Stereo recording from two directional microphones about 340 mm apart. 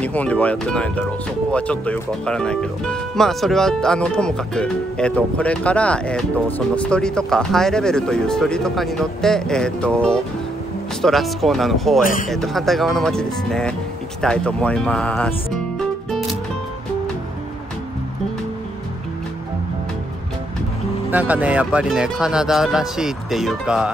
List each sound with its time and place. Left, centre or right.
0.0 s speech: centre
12.0 s a man's voice: left
12.3 s speech: centre
21.1 s speech: centre